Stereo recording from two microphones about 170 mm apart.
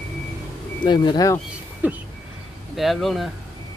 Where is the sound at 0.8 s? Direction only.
25° left (ahead or behind).